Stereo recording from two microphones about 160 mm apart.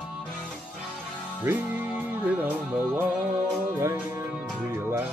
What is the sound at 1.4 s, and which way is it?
Music, 10° right (ahead or behind).